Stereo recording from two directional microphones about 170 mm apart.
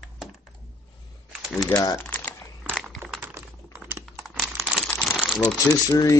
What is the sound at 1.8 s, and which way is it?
Crumpling, 15° left (ahead or behind).